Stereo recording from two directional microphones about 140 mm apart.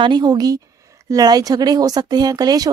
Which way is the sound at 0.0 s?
30° right (ahead or behind).